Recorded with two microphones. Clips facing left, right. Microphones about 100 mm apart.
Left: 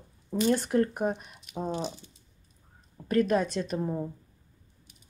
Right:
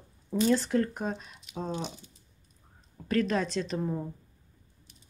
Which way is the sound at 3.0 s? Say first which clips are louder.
Left 3 dB; 10° left (ahead or behind).